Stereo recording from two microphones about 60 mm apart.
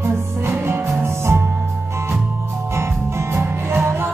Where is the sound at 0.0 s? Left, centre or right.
Right.